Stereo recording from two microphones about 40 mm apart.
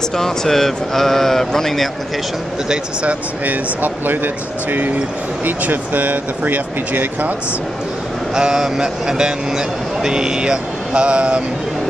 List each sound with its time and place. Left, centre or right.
0.1 s speech: centre
3.0 s speech: right
3.8 s speech: right
8.4 s a man's voice: centre